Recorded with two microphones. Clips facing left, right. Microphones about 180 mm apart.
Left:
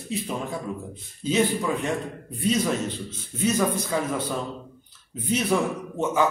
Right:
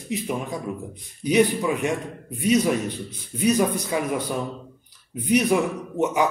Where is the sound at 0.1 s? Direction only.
15° right (ahead or behind).